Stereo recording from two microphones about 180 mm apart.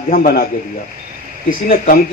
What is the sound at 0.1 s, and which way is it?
Speech, 55° left (ahead or behind).